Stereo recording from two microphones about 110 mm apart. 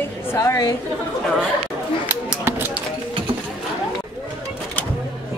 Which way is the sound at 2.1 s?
20° right (ahead or behind).